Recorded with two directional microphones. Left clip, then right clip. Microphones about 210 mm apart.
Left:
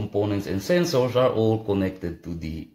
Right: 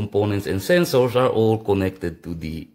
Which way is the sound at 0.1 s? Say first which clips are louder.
Right 4 dB; 45° right (ahead or behind).